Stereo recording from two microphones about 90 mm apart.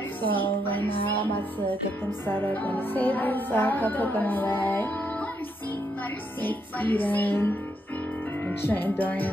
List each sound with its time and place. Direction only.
0.3 s music: 20° left (ahead or behind)
6.4 s music: 20° left (ahead or behind)